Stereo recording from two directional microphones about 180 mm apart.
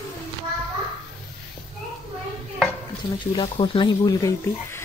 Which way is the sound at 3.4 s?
25° left (ahead or behind).